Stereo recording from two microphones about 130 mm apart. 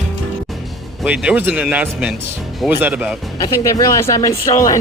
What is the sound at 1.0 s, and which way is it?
Speech, 10° right (ahead or behind).